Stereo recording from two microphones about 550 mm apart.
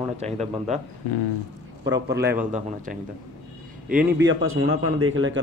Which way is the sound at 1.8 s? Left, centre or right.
Centre.